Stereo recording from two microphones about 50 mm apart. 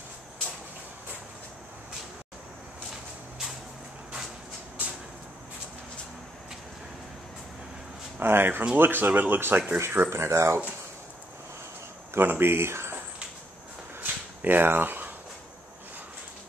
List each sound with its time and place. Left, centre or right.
8.2 s speech: right
10.0 s speech: right
12.2 s speech: right
14.0 s a sound: right